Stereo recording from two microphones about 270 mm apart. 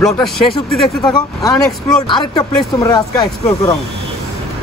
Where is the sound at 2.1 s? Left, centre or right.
Centre.